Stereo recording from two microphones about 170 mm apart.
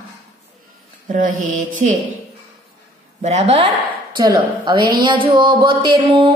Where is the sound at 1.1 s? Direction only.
50° right (ahead or behind).